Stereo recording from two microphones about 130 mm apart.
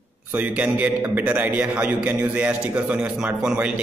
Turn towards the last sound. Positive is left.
turn(degrees=-10)  # may be behind; listen again after turning